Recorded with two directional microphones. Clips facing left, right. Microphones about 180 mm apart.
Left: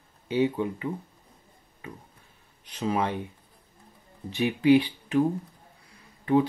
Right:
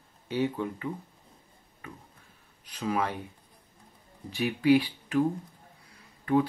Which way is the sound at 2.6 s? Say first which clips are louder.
Left 2 dB; 25° left (ahead or behind).